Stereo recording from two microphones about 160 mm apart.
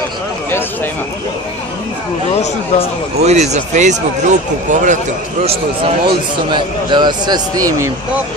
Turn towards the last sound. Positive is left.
turn(degrees=-25)  # may be behind; listen again after turning